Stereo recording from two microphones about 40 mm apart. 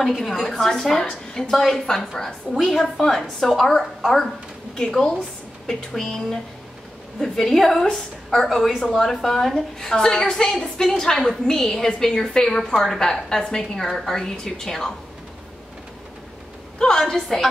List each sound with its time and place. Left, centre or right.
0.0 s a woman's voice: centre
4.7 s a woman's voice: centre
16.7 s a woman's voice: centre
17.0 s a woman's voice: centre